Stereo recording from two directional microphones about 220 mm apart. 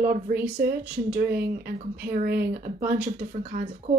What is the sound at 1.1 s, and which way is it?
Speech, 45° right (ahead or behind).